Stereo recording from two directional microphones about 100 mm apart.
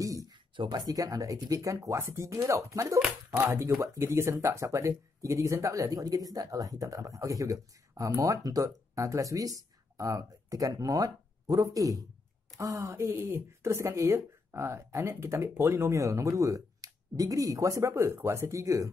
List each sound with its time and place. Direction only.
0.6 s speech: 45° right (ahead or behind)